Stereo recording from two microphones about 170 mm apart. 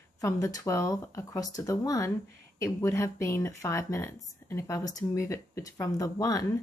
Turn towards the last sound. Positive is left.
turn(degrees=20)  # may be behind; listen again after turning